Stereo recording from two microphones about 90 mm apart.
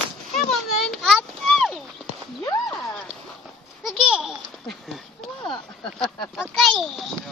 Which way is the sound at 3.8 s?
5° right (ahead or behind).